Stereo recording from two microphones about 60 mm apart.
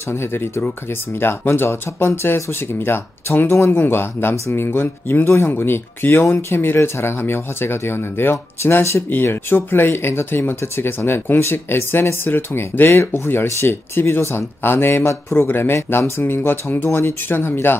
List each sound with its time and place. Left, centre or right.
0.1 s speech: left